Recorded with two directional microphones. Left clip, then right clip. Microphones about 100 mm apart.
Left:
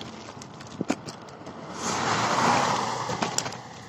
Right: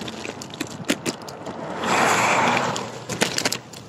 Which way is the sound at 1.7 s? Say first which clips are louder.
Right 8 dB; 35° right (ahead or behind).